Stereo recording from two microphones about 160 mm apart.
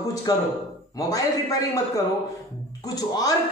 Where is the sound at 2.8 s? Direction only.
25° left (ahead or behind).